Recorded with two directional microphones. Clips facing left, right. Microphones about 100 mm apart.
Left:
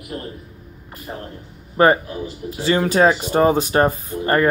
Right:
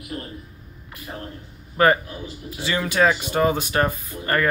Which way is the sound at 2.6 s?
35° left (ahead or behind).